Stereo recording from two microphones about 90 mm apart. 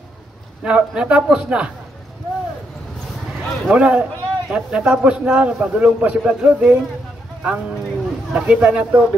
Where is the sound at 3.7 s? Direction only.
15° right (ahead or behind).